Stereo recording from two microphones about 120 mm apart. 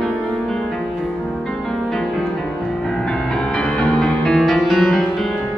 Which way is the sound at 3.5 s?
10° left (ahead or behind).